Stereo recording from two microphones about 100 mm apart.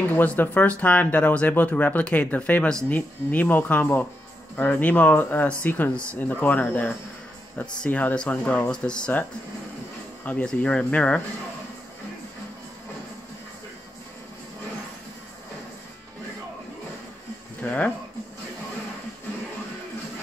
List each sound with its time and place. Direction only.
0.1 s speech: 20° left (ahead or behind)
10.2 s speech: 15° left (ahead or behind)
17.6 s music: 15° left (ahead or behind)